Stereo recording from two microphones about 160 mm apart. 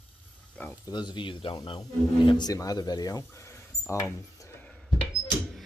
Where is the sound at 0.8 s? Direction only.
25° left (ahead or behind).